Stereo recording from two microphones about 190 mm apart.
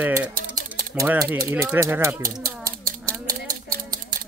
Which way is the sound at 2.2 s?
50° right (ahead or behind).